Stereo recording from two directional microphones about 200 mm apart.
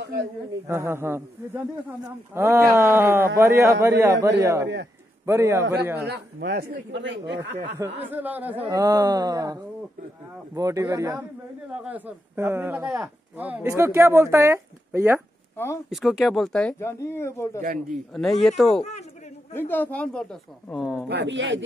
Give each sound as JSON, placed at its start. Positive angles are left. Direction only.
{"t": 0.7, "sound": "speech", "side_deg": -10}
{"t": 4.6, "sound": "speech", "side_deg": -55}
{"t": 5.2, "sound": "speech", "side_deg": -15}
{"t": 6.0, "sound": "speech", "side_deg": -55}
{"t": 7.8, "sound": "speech", "side_deg": -10}
{"t": 15.5, "sound": "speech", "side_deg": 15}
{"t": 15.9, "sound": "speech", "side_deg": 0}
{"t": 17.6, "sound": "a man's voice", "side_deg": -45}
{"t": 17.9, "sound": "speech", "side_deg": 0}
{"t": 18.8, "sound": "speech", "side_deg": 35}
{"t": 19.5, "sound": "speech", "side_deg": 10}
{"t": 21.1, "sound": "speech", "side_deg": -60}